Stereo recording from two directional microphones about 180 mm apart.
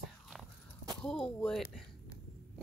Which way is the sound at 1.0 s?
5° left (ahead or behind).